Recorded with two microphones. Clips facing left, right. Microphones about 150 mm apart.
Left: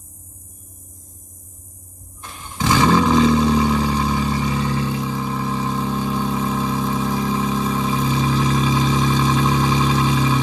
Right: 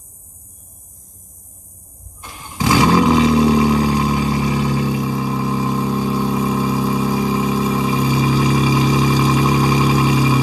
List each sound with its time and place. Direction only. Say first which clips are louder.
2.2 s vehicle: right 2 dB; 10° right (ahead or behind)